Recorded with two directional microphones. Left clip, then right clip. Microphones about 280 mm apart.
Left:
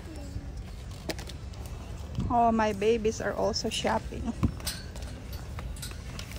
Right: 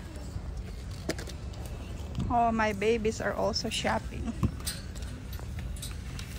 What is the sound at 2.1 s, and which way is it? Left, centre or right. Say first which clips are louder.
Speech: left 2 dB; centre.